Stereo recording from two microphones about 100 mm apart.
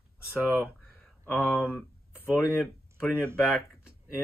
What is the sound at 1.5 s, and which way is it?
Speech, 15° right (ahead or behind).